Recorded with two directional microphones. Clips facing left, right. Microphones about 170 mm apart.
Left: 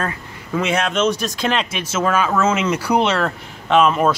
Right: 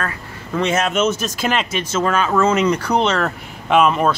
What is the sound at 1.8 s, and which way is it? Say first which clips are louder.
Speech: even; 5° left (ahead or behind).